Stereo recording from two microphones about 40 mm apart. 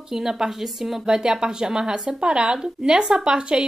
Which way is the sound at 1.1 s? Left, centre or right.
Centre.